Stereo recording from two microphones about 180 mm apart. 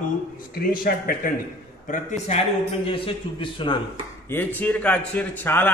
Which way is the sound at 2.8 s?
30° left (ahead or behind).